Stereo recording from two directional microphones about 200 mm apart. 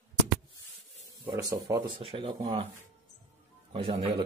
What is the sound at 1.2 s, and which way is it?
Speech, 15° right (ahead or behind).